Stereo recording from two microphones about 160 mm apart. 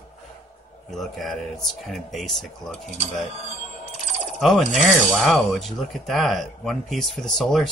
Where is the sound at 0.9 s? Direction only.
Centre (ahead or behind).